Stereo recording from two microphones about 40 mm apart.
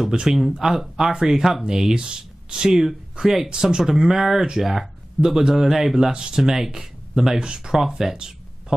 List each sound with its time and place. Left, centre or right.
0.1 s speech: centre
2.7 s speech: centre
6.1 s speech: centre